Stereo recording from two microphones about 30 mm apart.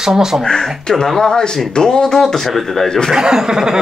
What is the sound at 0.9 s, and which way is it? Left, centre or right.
A woman's voice, left.